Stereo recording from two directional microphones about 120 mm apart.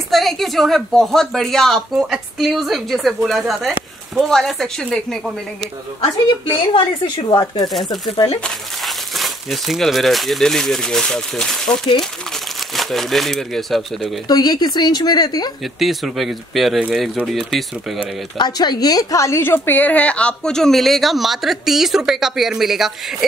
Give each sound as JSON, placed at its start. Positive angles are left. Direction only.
{"t": 0.1, "sound": "a woman's voice", "side_deg": 0}
{"t": 6.4, "sound": "a woman's voice", "side_deg": 45}
{"t": 8.5, "sound": "a woman's voice", "side_deg": 0}
{"t": 14.2, "sound": "speech", "side_deg": 35}
{"t": 15.8, "sound": "a woman's voice", "side_deg": 0}
{"t": 18.4, "sound": "a woman's voice", "side_deg": 35}